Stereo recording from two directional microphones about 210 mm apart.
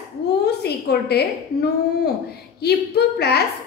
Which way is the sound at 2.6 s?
50° left (ahead or behind).